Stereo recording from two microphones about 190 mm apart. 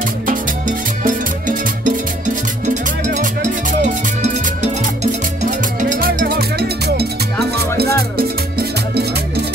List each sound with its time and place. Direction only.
0.3 s music: 45° right (ahead or behind)
7.5 s music: 55° right (ahead or behind)